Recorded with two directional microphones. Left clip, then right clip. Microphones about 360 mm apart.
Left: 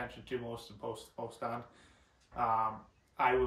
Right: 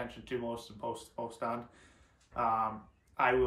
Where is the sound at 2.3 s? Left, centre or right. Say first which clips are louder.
Right 2 dB; centre.